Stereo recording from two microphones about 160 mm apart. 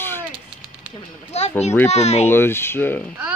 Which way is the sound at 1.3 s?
45° left (ahead or behind).